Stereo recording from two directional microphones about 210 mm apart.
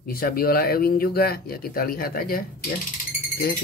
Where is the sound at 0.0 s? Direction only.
45° left (ahead or behind).